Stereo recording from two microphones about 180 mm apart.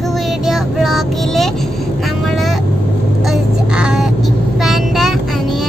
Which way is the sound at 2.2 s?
Centre (ahead or behind).